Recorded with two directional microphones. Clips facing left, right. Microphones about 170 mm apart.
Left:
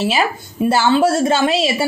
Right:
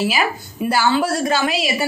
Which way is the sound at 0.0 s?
30° left (ahead or behind).